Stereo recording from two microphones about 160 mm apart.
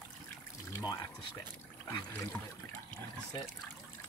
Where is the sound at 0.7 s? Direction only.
25° left (ahead or behind).